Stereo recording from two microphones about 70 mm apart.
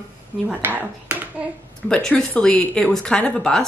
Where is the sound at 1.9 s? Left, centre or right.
Centre.